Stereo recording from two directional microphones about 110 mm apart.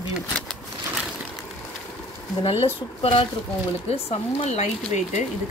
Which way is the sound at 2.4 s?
60° left (ahead or behind).